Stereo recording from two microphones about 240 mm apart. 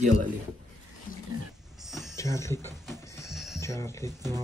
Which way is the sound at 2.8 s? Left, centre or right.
Centre.